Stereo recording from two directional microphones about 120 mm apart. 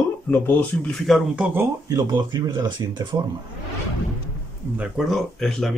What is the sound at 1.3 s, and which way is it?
Speech, 15° right (ahead or behind).